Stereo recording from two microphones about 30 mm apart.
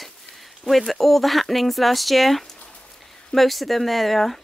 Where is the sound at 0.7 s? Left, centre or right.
Centre.